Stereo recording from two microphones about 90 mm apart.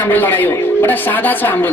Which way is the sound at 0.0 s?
20° left (ahead or behind).